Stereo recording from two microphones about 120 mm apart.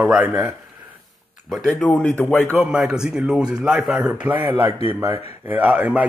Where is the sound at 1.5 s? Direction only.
10° left (ahead or behind).